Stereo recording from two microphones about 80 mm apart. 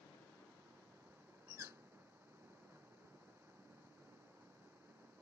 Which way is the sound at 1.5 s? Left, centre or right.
Right.